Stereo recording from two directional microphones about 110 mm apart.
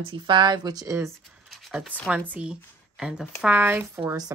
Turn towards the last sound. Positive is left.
turn(degrees=-15)  # may be behind; listen again after turning